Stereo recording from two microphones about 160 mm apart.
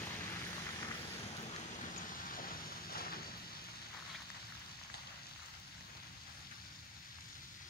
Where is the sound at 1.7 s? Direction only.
60° left (ahead or behind).